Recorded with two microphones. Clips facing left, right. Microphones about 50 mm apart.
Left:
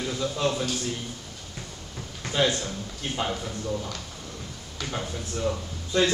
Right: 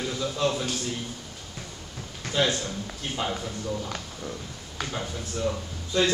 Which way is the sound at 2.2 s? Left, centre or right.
Centre.